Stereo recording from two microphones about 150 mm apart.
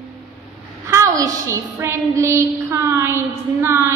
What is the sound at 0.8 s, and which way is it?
A woman's voice, 20° right (ahead or behind).